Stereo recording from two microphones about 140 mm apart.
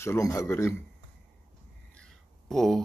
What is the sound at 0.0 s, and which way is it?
Speech, 20° left (ahead or behind).